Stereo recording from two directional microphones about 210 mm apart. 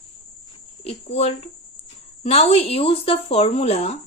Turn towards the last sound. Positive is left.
turn(degrees=30)  # may be behind; listen again after turning